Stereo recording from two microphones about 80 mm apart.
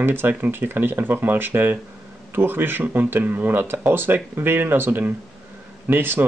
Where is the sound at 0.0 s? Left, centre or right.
Right.